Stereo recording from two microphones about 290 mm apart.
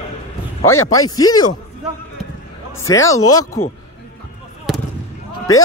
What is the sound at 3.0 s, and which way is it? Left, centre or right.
Speech, left.